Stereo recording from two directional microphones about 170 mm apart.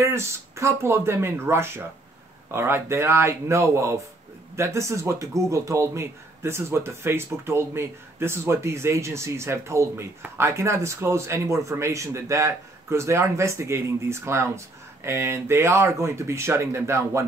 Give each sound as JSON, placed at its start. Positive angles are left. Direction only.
{"t": 0.0, "sound": "a man's voice", "side_deg": -15}